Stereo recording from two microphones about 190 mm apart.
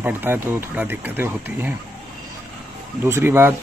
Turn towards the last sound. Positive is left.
turn(degrees=-10)  # may be behind; listen again after turning